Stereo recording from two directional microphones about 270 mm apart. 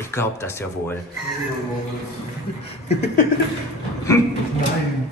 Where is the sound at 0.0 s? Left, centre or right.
Centre.